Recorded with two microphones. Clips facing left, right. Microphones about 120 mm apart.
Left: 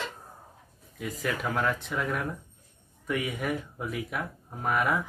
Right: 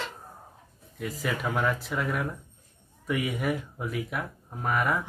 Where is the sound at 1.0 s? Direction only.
Centre (ahead or behind).